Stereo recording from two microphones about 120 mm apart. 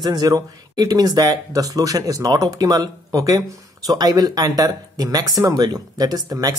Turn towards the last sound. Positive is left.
turn(degrees=-30)  # may be behind; listen again after turning